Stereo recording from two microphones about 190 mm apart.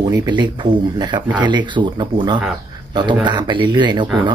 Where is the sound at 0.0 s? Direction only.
20° right (ahead or behind).